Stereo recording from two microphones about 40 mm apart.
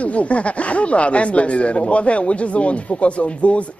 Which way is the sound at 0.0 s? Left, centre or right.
Left.